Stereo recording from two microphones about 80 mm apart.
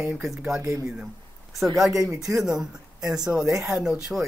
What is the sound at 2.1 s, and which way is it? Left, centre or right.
Speech, right.